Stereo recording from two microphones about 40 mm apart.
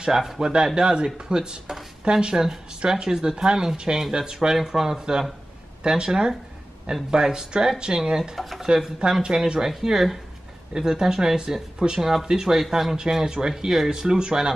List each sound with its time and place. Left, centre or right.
0.4 s speech: right
9.1 s speech: centre
12.9 s speech: centre